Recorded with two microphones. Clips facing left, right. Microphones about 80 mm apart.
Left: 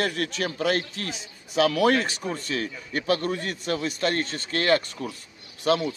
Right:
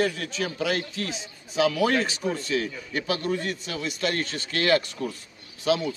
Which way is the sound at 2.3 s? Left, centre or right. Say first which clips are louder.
Right 2 dB; left.